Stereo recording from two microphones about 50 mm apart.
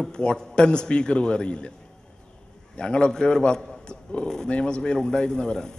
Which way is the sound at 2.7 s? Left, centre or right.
Centre.